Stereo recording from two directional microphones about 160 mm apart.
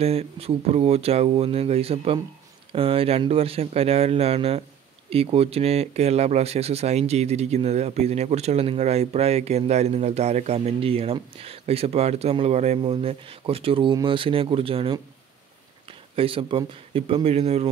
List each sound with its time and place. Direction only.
0.0 s speech: 40° right (ahead or behind)
16.2 s speech: 35° right (ahead or behind)